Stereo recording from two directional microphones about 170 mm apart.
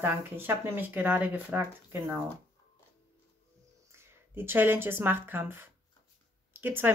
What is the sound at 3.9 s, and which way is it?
Speech, 15° right (ahead or behind).